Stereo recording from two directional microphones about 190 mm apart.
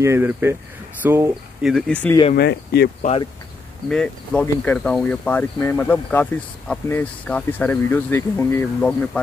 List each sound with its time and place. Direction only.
0.0 s speech: 10° right (ahead or behind)
1.7 s speech: 5° left (ahead or behind)
2.3 s speech: 60° left (ahead or behind)
3.0 s speech: 35° left (ahead or behind)
3.9 s speech: 5° left (ahead or behind)